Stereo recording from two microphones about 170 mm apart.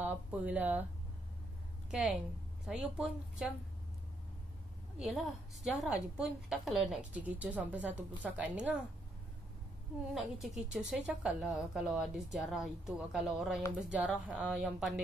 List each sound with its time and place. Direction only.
0.0 s speech: 10° right (ahead or behind)
1.9 s a woman's voice: 5° right (ahead or behind)
4.9 s a woman's voice: centre (ahead or behind)
10.1 s a woman's voice: centre (ahead or behind)